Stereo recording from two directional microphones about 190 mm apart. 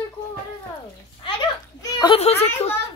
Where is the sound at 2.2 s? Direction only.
35° left (ahead or behind).